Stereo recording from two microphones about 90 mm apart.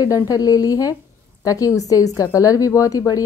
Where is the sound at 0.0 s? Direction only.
45° left (ahead or behind).